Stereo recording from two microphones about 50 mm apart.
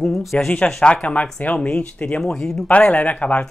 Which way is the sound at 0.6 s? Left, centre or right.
Left.